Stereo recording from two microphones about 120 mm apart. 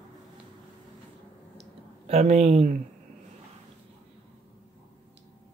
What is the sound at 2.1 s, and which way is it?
Speech, 65° right (ahead or behind).